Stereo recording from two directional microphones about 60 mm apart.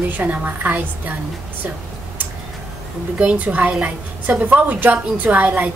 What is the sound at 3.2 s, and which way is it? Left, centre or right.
A woman's voice, right.